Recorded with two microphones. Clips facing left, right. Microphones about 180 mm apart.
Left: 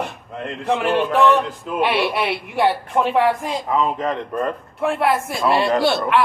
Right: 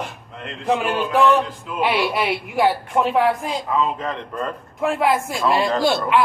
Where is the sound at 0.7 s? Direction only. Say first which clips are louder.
Left 2 dB; 10° right (ahead or behind).